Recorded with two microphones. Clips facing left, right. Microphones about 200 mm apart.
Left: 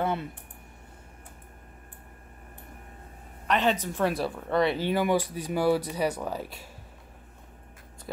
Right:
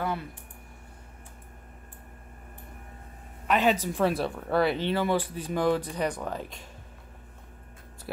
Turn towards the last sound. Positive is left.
turn(degrees=10)  # may be behind; listen again after turning